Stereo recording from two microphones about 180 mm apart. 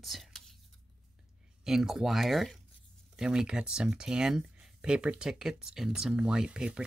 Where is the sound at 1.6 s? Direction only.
Centre (ahead or behind).